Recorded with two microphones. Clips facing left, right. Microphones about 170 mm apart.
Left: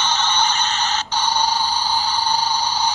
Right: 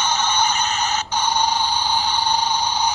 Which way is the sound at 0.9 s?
15° right (ahead or behind).